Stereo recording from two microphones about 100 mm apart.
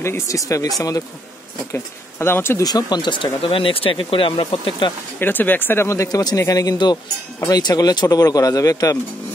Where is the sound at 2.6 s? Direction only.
45° left (ahead or behind).